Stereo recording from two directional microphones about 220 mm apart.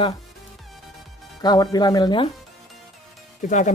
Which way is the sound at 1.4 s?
20° left (ahead or behind).